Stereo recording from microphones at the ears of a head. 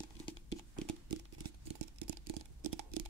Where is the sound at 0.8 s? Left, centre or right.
Right.